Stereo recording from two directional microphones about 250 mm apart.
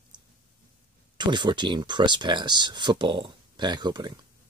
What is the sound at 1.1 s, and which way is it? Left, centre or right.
Speech, centre.